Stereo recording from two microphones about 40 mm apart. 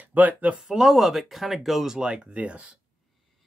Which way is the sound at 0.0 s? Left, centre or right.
Right.